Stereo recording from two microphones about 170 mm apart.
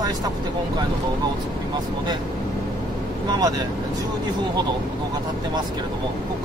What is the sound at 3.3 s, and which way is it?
Speech, 20° right (ahead or behind).